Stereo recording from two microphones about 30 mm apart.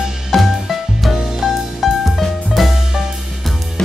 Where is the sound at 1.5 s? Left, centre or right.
Centre.